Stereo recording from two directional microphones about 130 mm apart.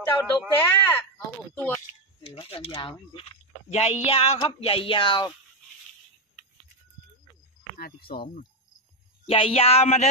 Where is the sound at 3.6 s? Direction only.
60° left (ahead or behind); by 5.3 s 40° left (ahead or behind).